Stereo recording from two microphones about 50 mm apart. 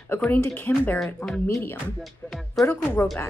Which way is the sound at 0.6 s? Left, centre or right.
Left.